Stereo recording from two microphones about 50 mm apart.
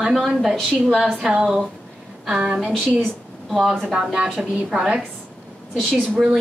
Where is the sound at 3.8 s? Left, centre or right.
Centre.